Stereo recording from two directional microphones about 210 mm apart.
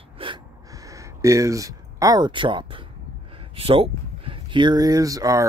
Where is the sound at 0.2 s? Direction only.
20° right (ahead or behind).